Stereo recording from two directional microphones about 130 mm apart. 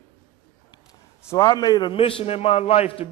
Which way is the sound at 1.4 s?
30° left (ahead or behind).